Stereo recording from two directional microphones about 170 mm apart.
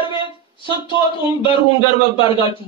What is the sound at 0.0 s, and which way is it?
Speech, 30° left (ahead or behind).